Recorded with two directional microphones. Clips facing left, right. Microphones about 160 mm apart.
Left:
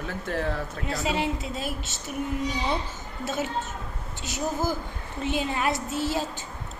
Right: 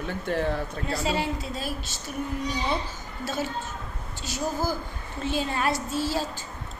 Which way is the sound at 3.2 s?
20° left (ahead or behind).